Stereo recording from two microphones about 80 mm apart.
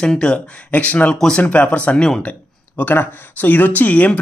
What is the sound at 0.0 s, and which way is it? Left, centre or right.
Speech, centre.